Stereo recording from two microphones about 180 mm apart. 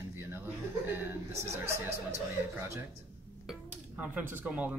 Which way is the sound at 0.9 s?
15° right (ahead or behind).